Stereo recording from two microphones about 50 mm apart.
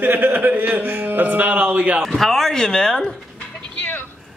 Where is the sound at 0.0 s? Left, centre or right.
Right.